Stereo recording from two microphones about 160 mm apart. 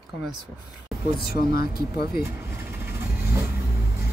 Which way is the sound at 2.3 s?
15° right (ahead or behind).